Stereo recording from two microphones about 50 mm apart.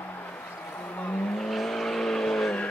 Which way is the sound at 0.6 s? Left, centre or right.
Left.